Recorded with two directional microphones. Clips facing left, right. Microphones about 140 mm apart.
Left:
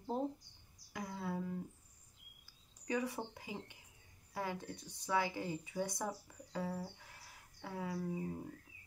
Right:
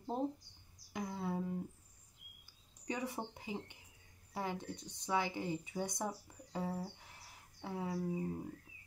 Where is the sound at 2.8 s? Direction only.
25° right (ahead or behind).